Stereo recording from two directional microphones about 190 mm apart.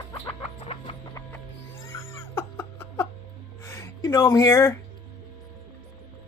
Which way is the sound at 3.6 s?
15° left (ahead or behind).